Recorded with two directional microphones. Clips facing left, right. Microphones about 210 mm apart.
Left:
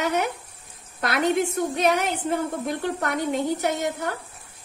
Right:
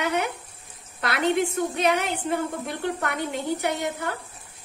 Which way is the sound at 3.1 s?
45° left (ahead or behind).